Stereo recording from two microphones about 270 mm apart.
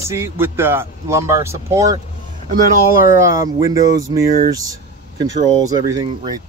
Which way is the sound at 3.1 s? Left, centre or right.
Centre.